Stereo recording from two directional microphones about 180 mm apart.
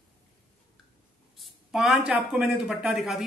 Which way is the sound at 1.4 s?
Centre (ahead or behind).